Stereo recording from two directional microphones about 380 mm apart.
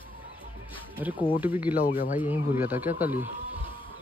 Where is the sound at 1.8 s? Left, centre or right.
Left.